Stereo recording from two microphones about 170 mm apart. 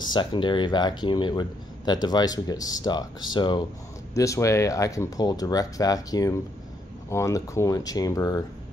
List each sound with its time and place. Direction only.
0.0 s speech: 25° left (ahead or behind)